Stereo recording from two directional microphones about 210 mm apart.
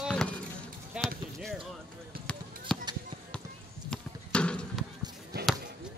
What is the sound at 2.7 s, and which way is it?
Basketball bounce, 5° left (ahead or behind).